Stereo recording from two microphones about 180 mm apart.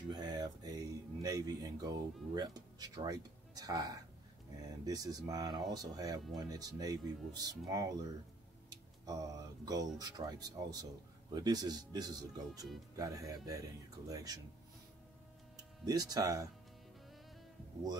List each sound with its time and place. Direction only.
0.1 s speech: 20° right (ahead or behind)
9.0 s speech: 20° right (ahead or behind)
15.5 s speech: 20° right (ahead or behind)